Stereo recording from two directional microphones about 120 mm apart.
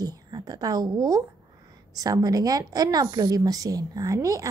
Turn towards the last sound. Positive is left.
turn(degrees=-30)  # may be behind; listen again after turning